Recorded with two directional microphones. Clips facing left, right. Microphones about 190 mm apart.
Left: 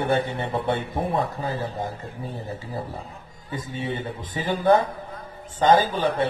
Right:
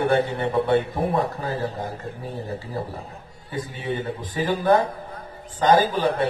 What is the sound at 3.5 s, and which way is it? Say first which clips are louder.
A man's voice: right 2 dB; 25° left (ahead or behind).